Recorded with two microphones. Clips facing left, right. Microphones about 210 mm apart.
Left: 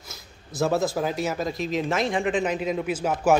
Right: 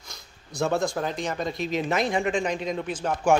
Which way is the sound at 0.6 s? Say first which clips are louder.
Left 2 dB; centre (ahead or behind).